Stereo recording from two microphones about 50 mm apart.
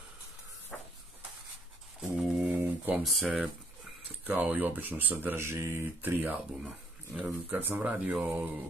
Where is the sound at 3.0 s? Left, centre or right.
Centre.